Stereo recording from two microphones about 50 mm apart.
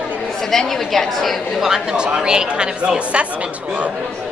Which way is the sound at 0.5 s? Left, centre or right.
Centre.